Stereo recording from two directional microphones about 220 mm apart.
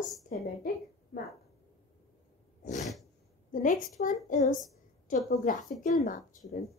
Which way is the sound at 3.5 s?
35° left (ahead or behind).